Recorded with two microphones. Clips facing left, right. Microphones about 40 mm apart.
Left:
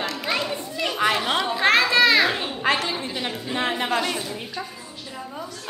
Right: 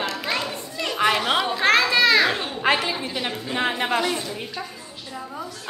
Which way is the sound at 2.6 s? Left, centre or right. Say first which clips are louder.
Right 2 dB; centre.